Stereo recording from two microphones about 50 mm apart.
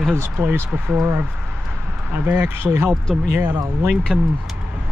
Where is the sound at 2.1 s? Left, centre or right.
Right.